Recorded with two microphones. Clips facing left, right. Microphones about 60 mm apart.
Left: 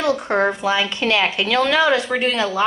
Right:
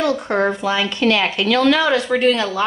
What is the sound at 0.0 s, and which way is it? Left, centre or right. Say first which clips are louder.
A woman's voice: even; centre.